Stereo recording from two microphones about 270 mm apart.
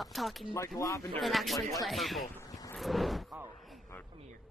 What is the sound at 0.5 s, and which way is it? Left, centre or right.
Speech, centre.